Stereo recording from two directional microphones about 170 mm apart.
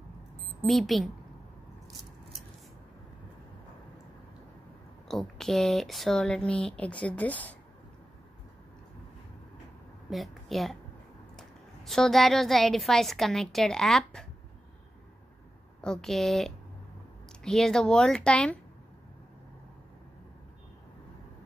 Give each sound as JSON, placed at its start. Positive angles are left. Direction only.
{"t": 0.7, "sound": "speech", "side_deg": 0}
{"t": 5.0, "sound": "speech", "side_deg": 0}
{"t": 10.0, "sound": "a woman's voice", "side_deg": 0}
{"t": 15.8, "sound": "speech", "side_deg": 5}